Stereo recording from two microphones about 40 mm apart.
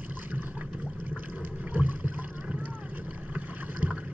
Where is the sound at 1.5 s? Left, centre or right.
Right.